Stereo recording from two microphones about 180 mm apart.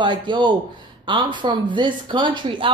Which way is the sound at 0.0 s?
25° right (ahead or behind).